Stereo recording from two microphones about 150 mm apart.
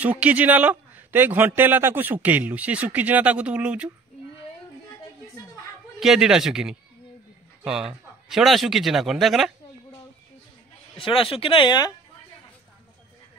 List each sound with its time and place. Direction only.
0.0 s a man's voice: 10° right (ahead or behind)
5.9 s a man's voice: 5° right (ahead or behind)
11.0 s speech: 35° left (ahead or behind)